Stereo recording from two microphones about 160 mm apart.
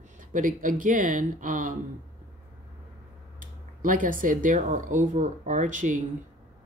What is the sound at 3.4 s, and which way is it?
Speech, 55° right (ahead or behind).